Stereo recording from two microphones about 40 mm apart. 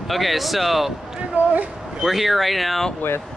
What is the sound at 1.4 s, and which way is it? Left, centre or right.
Speech, right.